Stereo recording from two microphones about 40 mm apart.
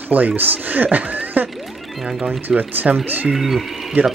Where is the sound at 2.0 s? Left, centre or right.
Centre.